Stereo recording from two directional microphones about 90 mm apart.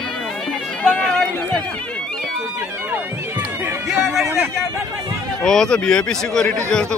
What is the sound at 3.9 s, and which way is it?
Speech, 5° right (ahead or behind).